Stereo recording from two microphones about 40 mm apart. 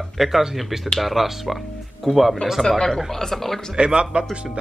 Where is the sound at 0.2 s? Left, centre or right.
Centre.